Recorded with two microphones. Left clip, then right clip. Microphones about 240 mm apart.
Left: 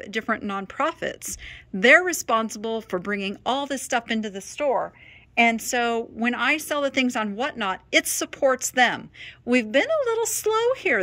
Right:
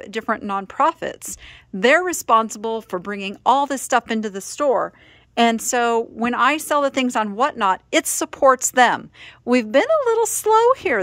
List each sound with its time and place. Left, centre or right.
0.0 s a woman's voice: centre; by 4.9 s right
5.5 s a woman's voice: centre